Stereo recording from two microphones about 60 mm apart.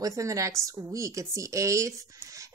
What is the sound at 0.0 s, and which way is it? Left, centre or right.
A woman's voice, right.